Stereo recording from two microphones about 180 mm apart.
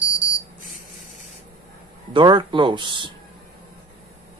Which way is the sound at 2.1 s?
25° right (ahead or behind).